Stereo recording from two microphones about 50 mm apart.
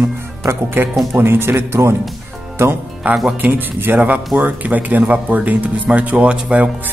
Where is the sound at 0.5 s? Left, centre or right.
Right.